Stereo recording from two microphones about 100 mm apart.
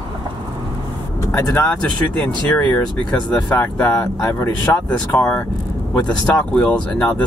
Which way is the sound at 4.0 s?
30° left (ahead or behind).